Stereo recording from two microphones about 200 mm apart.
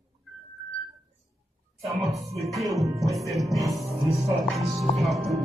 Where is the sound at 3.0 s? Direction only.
15° right (ahead or behind).